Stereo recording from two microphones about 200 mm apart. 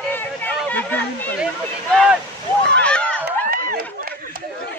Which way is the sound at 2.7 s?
5° left (ahead or behind).